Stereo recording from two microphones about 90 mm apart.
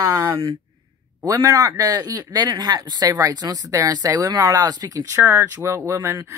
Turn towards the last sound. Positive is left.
turn(degrees=-35)  # may be behind; listen again after turning